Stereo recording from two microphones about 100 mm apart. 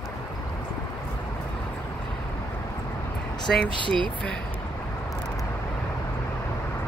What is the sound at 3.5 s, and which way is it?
Speech, 5° left (ahead or behind).